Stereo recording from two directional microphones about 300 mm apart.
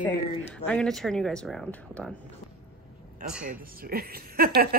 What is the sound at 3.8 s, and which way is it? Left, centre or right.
Speech, right.